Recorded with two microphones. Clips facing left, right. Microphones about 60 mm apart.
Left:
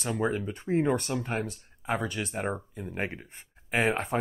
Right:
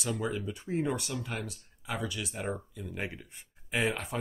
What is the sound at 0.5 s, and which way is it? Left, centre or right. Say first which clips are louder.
Speech: left 6 dB; left.